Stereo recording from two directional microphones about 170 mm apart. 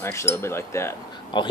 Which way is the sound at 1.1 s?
25° left (ahead or behind).